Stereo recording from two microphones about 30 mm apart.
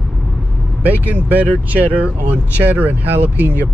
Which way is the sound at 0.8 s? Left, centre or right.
Right.